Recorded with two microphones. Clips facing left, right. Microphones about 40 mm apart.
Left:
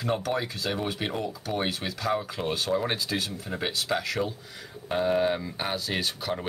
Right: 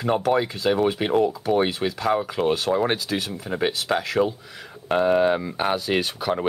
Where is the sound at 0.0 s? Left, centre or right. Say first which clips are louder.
Right 7 dB; right.